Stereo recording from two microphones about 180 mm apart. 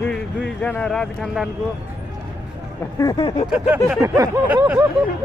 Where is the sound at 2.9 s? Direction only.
20° left (ahead or behind).